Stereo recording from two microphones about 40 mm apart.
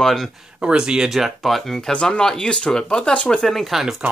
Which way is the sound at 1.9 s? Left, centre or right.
Left.